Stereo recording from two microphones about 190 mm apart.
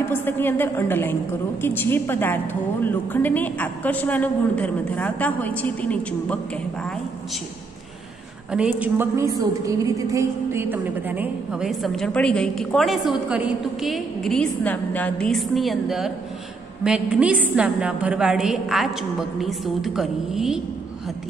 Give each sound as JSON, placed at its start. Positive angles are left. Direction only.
{"t": 0.1, "sound": "a woman's voice", "side_deg": 10}
{"t": 8.5, "sound": "a woman's voice", "side_deg": -5}